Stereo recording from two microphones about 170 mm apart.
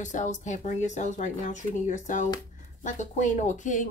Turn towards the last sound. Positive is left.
turn(degrees=45)  # may be behind; listen again after turning